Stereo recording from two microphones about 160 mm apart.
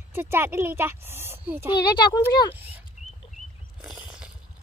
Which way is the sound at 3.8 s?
5° right (ahead or behind).